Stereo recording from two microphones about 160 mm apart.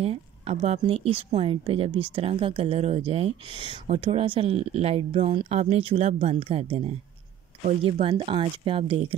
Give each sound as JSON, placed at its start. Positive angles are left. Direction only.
{"t": 0.0, "sound": "a woman's voice", "side_deg": -40}